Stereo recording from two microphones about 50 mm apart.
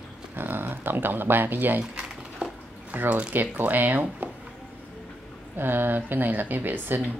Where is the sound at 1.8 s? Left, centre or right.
Centre.